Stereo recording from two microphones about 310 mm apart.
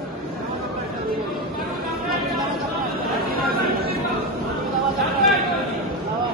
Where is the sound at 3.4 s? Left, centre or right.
Right.